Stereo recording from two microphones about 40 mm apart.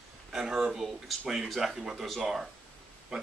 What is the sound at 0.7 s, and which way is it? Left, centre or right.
A man's voice, centre.